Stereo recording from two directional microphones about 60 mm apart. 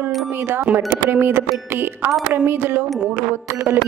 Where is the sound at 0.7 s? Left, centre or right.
Right.